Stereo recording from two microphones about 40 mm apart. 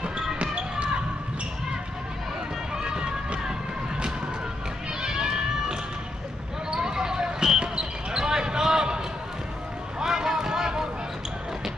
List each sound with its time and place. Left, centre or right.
0.4 s basketball bounce: right
2.7 s music: right
5.0 s run: centre
6.7 s basketball bounce: centre
9.9 s vehicle: centre